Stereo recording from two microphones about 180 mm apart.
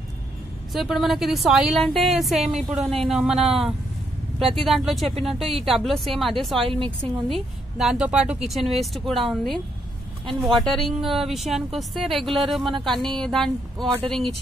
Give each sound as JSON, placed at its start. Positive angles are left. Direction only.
{"t": 0.7, "sound": "a woman's voice", "side_deg": 0}
{"t": 6.6, "sound": "a woman's voice", "side_deg": -30}
{"t": 7.2, "sound": "a woman's voice", "side_deg": 0}